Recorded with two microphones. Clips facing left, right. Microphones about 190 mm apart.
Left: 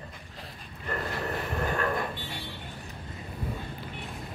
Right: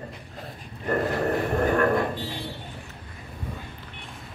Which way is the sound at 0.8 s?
45° right (ahead or behind).